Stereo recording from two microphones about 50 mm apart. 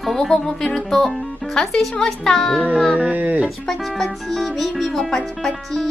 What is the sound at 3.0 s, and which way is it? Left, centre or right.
Speech, right.